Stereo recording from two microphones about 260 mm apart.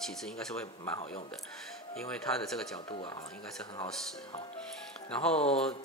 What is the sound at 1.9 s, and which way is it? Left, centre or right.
Speech, centre.